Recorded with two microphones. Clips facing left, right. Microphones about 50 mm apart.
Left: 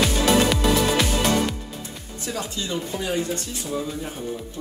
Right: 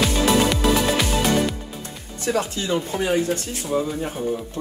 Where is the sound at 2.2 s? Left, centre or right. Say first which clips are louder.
Right 7 dB; right.